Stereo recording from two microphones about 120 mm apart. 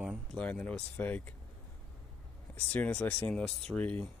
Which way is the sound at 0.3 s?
10° left (ahead or behind).